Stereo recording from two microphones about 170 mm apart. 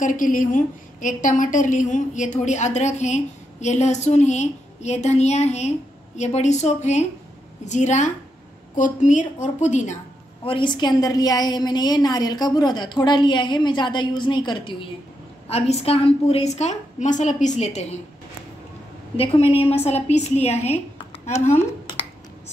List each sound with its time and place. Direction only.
0.0 s a woman's voice: 50° left (ahead or behind)
10.4 s a woman's voice: 30° left (ahead or behind)
19.1 s a woman's voice: 35° left (ahead or behind)